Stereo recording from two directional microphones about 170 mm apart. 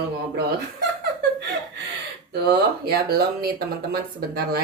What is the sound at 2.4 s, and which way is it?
Speech, 65° right (ahead or behind).